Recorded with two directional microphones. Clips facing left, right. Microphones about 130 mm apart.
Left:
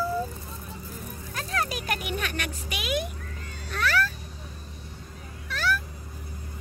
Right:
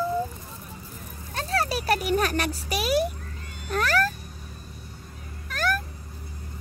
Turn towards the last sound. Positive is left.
turn(degrees=-45)  # may be behind; listen again after turning